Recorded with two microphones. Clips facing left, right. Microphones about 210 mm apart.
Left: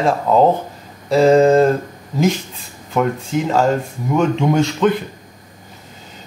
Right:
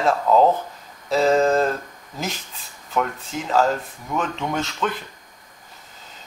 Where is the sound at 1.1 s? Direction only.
Centre (ahead or behind).